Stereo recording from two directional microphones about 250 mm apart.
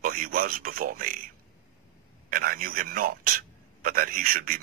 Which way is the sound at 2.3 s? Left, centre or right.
Right.